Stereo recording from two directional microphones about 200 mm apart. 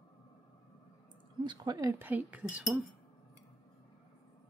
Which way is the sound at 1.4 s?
20° right (ahead or behind).